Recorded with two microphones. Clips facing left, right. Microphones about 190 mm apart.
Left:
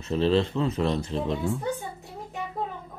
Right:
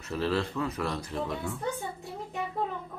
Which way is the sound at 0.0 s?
25° left (ahead or behind).